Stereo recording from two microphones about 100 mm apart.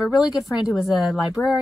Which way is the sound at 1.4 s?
15° left (ahead or behind).